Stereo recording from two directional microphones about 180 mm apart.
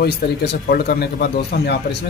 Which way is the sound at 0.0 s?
60° left (ahead or behind).